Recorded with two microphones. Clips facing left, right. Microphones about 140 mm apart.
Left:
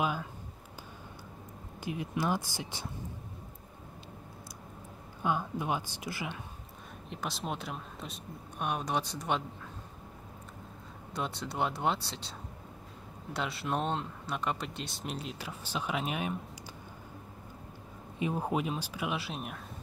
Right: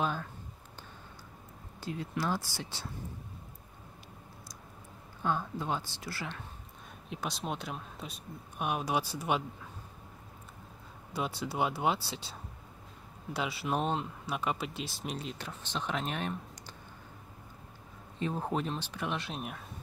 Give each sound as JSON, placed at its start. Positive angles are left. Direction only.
{"t": 0.0, "sound": "speech", "side_deg": 10}
{"t": 1.8, "sound": "speech", "side_deg": 15}
{"t": 5.2, "sound": "speech", "side_deg": 15}
{"t": 7.1, "sound": "speech", "side_deg": 0}
{"t": 11.1, "sound": "speech", "side_deg": -5}
{"t": 18.2, "sound": "speech", "side_deg": 10}